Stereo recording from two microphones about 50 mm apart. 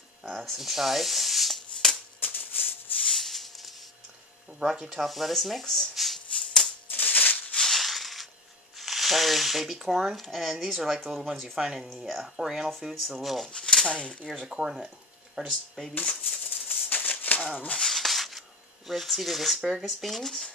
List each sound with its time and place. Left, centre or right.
0.2 s shuffling cards: centre
2.1 s a sound: left
3.1 s a sound: centre
4.5 s speech: centre
6.3 s music: centre
6.9 s maraca: left
7.5 s maraca: centre
8.7 s speech: centre
13.5 s speech: centre
14.5 s speech: centre
15.4 s speech: centre
16.4 s maraca: left
17.7 s a sound: centre
18.9 s speech: centre